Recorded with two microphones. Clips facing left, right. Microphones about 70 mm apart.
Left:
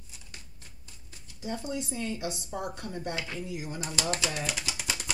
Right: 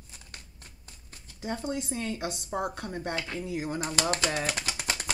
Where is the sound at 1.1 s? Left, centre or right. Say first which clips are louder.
Right 1 dB; right.